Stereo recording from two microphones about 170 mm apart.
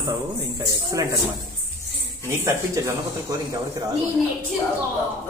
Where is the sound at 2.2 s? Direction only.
15° right (ahead or behind).